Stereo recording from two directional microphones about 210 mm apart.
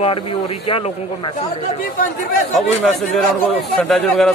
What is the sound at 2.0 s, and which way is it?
Speech, 40° left (ahead or behind).